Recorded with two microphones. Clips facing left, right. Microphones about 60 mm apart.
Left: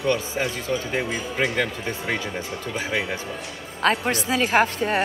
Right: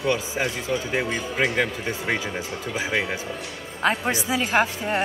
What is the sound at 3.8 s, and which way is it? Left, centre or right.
Speech, left.